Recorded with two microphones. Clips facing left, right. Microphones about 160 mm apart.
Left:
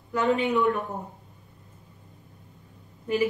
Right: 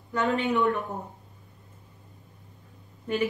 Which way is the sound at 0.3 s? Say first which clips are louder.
Left 2 dB; centre (ahead or behind).